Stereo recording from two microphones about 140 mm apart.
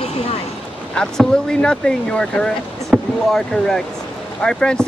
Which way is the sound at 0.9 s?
5° left (ahead or behind).